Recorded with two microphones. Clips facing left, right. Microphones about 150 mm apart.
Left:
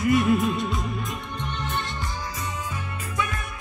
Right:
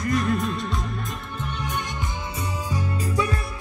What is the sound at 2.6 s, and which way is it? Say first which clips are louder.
Music: right 6 dB; 35° right (ahead or behind).